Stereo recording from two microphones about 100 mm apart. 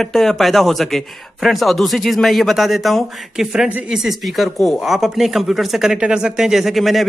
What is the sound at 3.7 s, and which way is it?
Speech, 15° right (ahead or behind).